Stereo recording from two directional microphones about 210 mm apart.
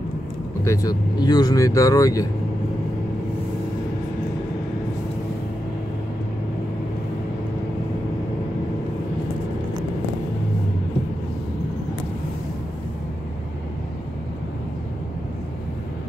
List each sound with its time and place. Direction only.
0.7 s speech: 15° left (ahead or behind)